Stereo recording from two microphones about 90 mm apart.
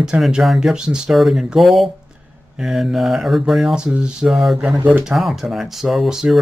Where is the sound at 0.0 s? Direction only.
10° right (ahead or behind).